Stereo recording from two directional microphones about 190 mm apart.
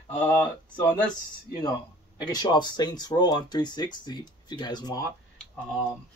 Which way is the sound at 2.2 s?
20° left (ahead or behind).